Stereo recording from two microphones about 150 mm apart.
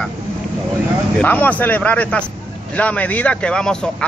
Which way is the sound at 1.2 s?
10° left (ahead or behind).